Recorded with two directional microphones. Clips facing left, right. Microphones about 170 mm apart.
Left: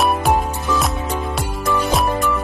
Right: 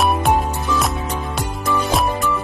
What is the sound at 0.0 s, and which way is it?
Music, centre (ahead or behind).